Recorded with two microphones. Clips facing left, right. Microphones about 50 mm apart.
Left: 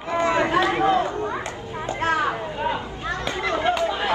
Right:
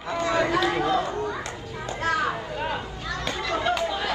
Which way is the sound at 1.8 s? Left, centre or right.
Left.